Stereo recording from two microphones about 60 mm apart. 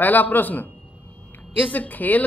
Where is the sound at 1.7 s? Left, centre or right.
Left.